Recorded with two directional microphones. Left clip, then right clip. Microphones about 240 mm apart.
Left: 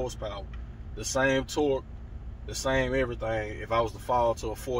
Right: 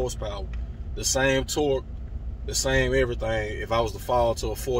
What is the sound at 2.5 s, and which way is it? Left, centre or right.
Speech, centre.